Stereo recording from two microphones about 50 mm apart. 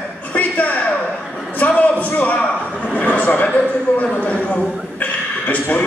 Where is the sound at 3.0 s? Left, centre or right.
Left.